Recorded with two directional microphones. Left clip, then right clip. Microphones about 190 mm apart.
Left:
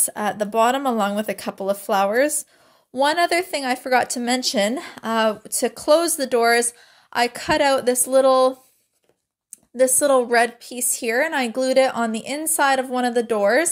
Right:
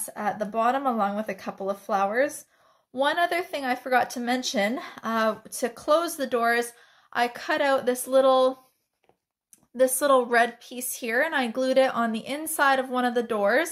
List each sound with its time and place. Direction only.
0.0 s speech: 50° left (ahead or behind); by 8.5 s 35° left (ahead or behind)
9.9 s speech: 25° left (ahead or behind)